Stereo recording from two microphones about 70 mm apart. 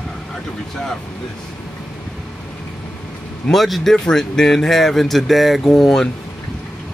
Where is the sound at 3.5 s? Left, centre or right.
Centre.